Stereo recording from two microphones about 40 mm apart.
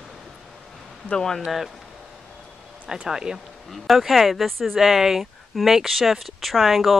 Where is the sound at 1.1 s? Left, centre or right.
Centre.